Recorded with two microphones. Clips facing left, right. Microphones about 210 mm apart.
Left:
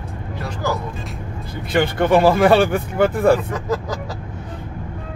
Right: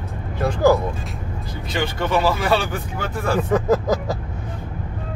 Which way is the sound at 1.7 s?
55° left (ahead or behind).